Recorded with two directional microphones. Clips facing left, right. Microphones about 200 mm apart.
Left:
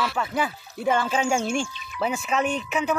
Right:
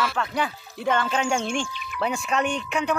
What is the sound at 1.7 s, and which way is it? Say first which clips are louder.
Music: right 5 dB; 60° right (ahead or behind).